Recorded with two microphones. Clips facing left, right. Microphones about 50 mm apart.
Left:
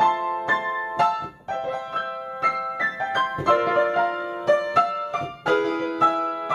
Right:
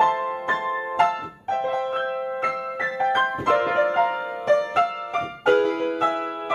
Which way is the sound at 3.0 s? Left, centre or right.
Right.